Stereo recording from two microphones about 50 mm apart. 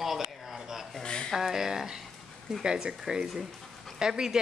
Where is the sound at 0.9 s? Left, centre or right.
Centre.